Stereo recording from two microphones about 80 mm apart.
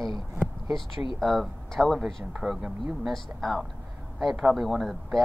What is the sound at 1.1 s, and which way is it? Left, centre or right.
Speech, centre.